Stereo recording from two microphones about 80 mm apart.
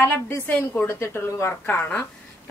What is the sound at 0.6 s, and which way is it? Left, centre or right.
A woman's voice, left.